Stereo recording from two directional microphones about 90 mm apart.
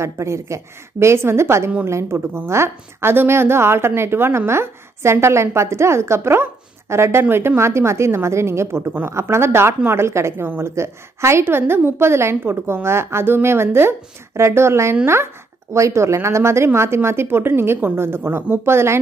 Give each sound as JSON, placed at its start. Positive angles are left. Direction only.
{"t": 0.0, "sound": "a woman's voice", "side_deg": -30}